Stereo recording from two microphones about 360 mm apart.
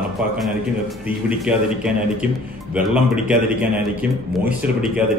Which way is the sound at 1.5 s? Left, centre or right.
Centre.